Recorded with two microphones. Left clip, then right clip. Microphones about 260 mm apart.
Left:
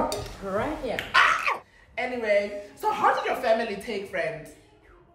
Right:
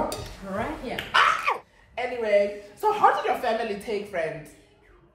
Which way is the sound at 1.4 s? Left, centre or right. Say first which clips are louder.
Right 1 dB; centre.